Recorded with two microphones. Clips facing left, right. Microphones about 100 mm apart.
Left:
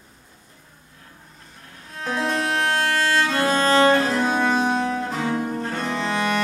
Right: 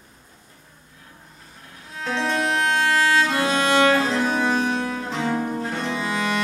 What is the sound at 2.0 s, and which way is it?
Music, 5° left (ahead or behind).